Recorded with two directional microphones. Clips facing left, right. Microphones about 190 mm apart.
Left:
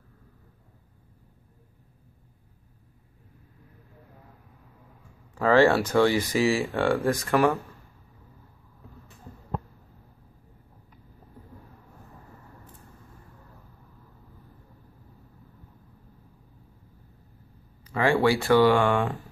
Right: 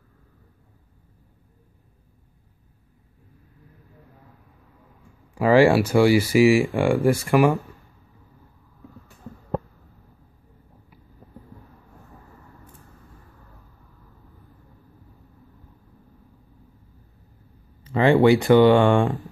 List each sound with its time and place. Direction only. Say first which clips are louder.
5.3 s speech: right 4 dB; 10° right (ahead or behind)
17.8 s speech: right 6 dB; 20° right (ahead or behind)